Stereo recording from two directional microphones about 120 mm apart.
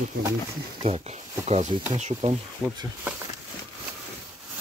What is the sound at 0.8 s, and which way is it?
Speech, 60° right (ahead or behind).